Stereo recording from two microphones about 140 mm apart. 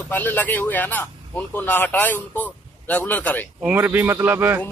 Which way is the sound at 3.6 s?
15° right (ahead or behind).